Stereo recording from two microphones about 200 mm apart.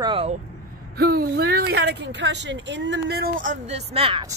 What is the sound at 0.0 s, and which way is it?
Vehicle, 25° right (ahead or behind).